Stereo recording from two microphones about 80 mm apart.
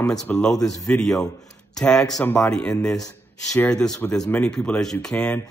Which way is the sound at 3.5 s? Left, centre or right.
Centre.